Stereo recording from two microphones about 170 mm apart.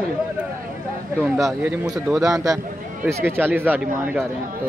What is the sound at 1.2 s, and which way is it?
Speech, 10° right (ahead or behind).